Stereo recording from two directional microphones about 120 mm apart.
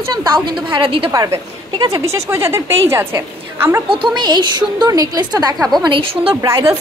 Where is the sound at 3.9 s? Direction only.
40° right (ahead or behind).